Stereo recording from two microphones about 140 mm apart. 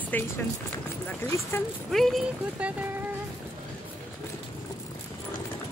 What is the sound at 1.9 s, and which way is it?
Speech, centre (ahead or behind).